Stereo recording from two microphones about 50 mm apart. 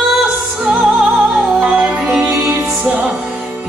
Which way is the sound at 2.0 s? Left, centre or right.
Centre.